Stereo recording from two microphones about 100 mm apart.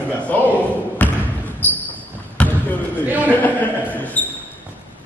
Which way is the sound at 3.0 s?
20° right (ahead or behind).